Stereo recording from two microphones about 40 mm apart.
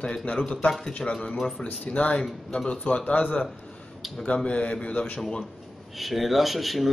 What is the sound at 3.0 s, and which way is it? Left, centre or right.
Speech, left.